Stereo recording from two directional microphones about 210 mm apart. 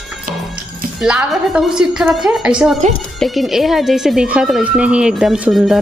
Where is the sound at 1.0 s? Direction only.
5° right (ahead or behind).